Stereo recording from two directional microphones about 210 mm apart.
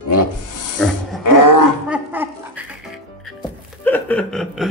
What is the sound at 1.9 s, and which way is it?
Music, 10° right (ahead or behind).